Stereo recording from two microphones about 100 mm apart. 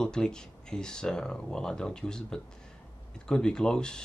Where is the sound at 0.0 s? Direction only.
5° left (ahead or behind).